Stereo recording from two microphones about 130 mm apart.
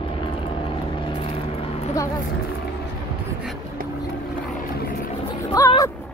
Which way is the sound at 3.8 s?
90° right.